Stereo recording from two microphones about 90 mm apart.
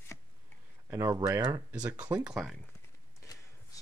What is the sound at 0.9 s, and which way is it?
Speech, 35° right (ahead or behind).